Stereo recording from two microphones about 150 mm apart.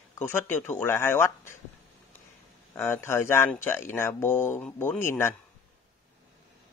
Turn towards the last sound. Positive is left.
turn(degrees=15)  # may be behind; listen again after turning